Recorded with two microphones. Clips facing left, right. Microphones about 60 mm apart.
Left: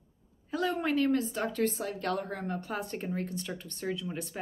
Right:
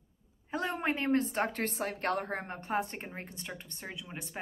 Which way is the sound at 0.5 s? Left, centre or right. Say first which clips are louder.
Left 3 dB; right.